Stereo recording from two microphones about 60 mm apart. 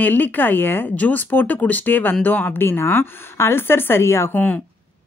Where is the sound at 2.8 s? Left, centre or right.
Left.